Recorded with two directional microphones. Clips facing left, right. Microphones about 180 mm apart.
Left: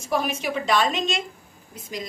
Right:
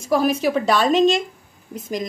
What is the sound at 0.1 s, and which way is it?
A woman's voice, 35° right (ahead or behind).